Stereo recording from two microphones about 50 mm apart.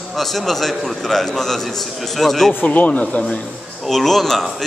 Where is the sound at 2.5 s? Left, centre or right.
Left.